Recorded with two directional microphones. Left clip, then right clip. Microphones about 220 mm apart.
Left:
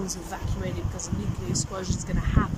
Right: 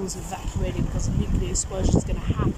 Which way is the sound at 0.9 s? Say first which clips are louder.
Right 4 dB; 10° right (ahead or behind).